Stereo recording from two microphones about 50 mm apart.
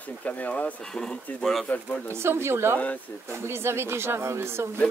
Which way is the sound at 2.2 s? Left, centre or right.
Right.